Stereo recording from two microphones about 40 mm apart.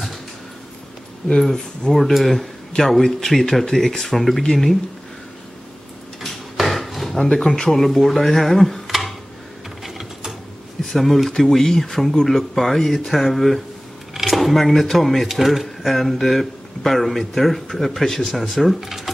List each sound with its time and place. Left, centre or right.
1.4 s speech: centre
6.2 s drawer open or close: centre
7.3 s speech: centre
9.8 s mechanisms: centre
10.9 s speech: centre
18.8 s a sound: centre